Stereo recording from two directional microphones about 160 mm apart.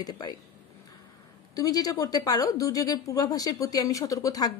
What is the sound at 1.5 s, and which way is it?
Speech, 20° left (ahead or behind).